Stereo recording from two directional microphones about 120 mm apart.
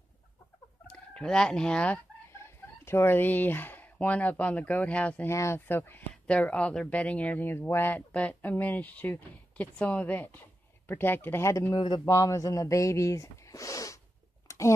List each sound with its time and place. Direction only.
0.8 s fowl: 5° left (ahead or behind)
2.3 s speech: 20° left (ahead or behind)
5.3 s speech: 25° left (ahead or behind)
14.5 s a sound: 25° left (ahead or behind)